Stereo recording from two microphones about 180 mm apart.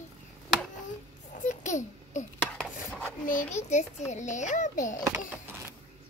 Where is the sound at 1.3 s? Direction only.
45° left (ahead or behind).